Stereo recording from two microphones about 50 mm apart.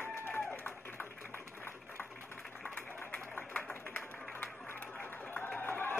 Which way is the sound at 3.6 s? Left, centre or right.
Left.